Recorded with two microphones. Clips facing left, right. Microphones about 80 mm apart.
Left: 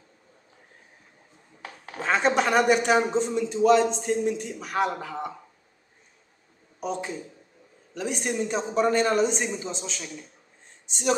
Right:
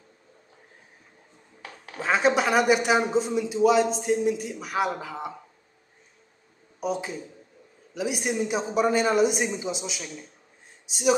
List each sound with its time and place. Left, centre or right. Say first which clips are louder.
2.0 s a man's voice: right 1 dB; centre
6.8 s a man's voice: right 1 dB; centre